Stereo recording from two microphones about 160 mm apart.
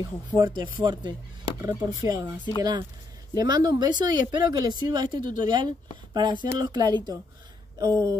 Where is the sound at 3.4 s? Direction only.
25° right (ahead or behind).